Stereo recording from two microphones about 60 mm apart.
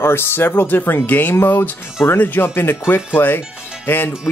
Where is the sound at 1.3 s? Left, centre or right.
Left.